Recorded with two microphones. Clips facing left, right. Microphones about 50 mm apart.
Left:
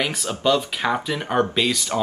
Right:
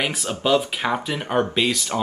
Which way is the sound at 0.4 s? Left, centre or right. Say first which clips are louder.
Even; centre.